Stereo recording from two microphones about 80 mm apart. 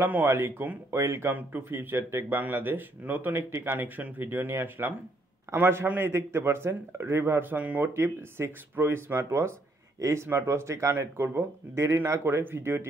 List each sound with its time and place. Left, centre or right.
0.0 s speech: right
7.9 s speech: right